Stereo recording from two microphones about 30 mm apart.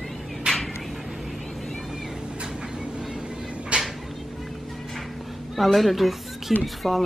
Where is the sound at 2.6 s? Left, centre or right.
Right.